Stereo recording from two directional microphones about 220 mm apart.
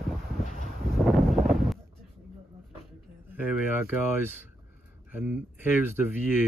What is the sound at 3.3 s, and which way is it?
Speech, 10° right (ahead or behind).